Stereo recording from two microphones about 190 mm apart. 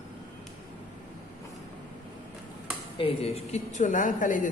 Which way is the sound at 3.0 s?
30° left (ahead or behind).